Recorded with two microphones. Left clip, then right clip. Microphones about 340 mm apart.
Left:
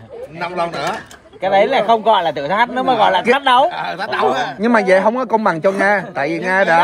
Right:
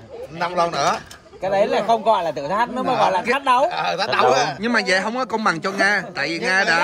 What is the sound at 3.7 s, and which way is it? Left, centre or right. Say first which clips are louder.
Speech: even; right.